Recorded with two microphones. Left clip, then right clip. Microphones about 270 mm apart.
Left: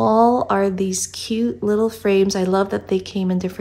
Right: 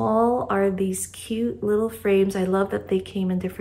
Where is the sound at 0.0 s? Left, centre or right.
Centre.